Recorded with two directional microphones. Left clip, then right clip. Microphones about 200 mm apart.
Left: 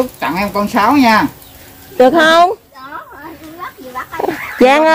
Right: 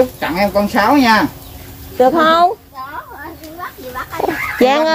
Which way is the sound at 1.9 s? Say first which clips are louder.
Left 3 dB; 35° left (ahead or behind).